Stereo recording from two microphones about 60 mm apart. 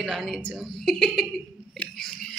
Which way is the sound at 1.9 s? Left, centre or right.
Centre.